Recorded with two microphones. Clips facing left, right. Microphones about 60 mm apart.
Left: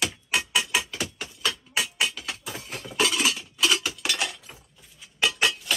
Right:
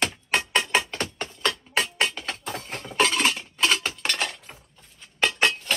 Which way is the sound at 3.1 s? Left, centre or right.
Right.